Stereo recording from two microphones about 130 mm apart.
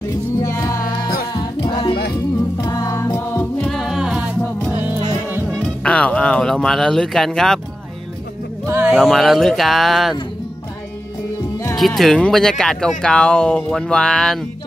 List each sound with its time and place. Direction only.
0.4 s music: 25° left (ahead or behind)
2.5 s music: 30° left (ahead or behind)
3.6 s music: centre (ahead or behind)
5.5 s music: 10° left (ahead or behind)
8.6 s a sound: 20° right (ahead or behind)
8.9 s speech: centre (ahead or behind)
11.7 s speech: centre (ahead or behind)